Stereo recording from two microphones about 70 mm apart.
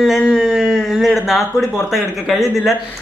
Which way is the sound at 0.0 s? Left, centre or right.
Centre.